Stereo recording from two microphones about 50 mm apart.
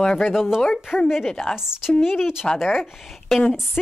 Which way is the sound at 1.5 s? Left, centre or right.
Centre.